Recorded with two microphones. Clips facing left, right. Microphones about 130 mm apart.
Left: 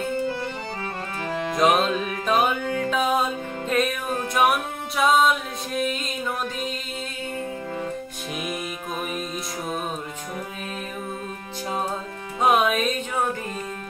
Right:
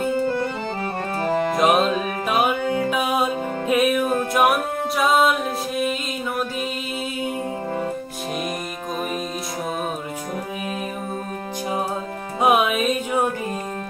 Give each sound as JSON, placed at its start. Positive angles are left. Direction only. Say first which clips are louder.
{"t": 1.2, "sound": "music", "louder": "right 6 dB", "side_deg": -50}
{"t": 1.6, "sound": "music", "louder": "even", "side_deg": -5}
{"t": 12.4, "sound": "music", "louder": "right 2 dB", "side_deg": -10}